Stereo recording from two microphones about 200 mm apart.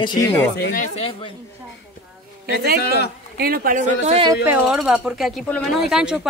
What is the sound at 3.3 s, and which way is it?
Speech, 50° right (ahead or behind).